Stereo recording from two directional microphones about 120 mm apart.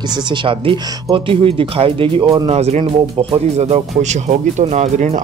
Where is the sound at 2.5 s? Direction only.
60° right (ahead or behind).